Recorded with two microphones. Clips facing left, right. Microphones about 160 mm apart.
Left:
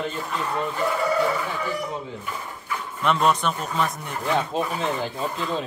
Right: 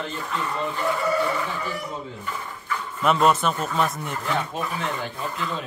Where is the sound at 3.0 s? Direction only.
5° right (ahead or behind).